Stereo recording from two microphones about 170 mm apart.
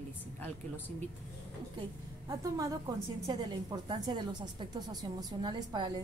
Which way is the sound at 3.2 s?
20° right (ahead or behind).